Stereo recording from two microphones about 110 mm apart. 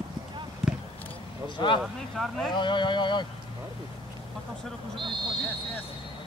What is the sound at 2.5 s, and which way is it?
Speech, 45° left (ahead or behind).